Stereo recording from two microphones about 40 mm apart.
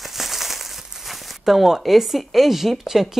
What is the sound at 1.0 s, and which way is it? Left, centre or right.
Speech, centre.